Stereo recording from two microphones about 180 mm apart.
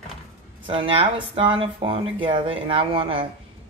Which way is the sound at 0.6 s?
30° right (ahead or behind).